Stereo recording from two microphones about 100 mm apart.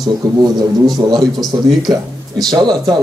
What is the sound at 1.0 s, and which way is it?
Speech, 40° right (ahead or behind).